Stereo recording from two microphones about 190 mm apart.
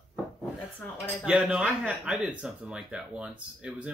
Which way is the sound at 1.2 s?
5° right (ahead or behind).